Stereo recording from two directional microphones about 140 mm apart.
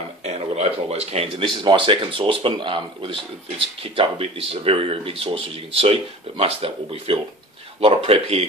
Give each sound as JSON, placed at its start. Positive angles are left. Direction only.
{"t": 0.2, "sound": "speech", "side_deg": -50}
{"t": 1.5, "sound": "speech", "side_deg": -35}